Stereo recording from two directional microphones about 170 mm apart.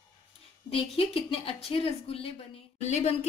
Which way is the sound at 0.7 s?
35° left (ahead or behind).